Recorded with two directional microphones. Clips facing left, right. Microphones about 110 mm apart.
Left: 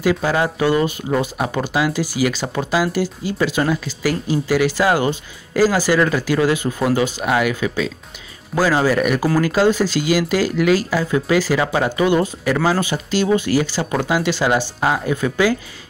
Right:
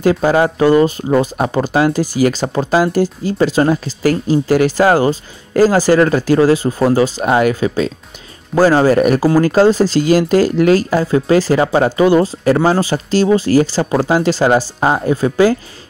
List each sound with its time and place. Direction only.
0.0 s speech: 45° right (ahead or behind)